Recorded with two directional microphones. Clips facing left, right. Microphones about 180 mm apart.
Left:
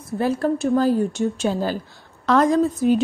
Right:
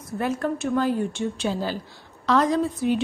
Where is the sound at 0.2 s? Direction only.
35° left (ahead or behind).